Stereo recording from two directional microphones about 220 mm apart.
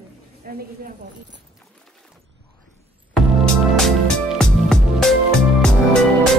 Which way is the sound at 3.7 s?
Centre (ahead or behind).